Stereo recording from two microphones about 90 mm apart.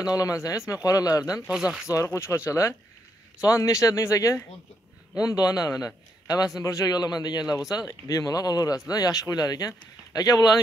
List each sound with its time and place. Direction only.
0.0 s speech: 40° left (ahead or behind)
1.5 s speech: 5° right (ahead or behind)
1.9 s speech: 30° left (ahead or behind)